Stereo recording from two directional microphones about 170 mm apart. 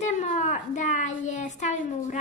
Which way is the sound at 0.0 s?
45° left (ahead or behind).